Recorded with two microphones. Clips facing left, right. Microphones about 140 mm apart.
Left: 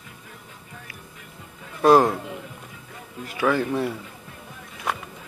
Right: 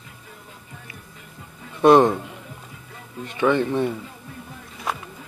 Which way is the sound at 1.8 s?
Centre (ahead or behind).